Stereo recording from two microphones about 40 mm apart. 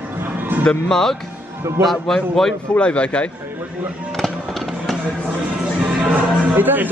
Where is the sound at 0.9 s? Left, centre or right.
Centre.